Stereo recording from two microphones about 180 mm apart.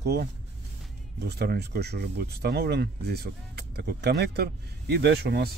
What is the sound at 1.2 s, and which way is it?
Speech, 65° right (ahead or behind).